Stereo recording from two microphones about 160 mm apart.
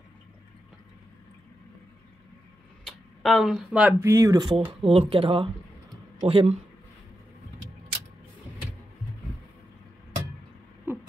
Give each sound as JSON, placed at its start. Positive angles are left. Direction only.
{"t": 2.8, "sound": "a sound", "side_deg": 0}
{"t": 4.0, "sound": "speech", "side_deg": -20}
{"t": 10.9, "sound": "owl", "side_deg": -15}